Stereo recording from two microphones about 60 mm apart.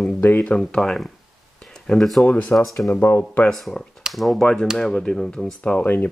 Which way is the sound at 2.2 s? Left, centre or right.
Left.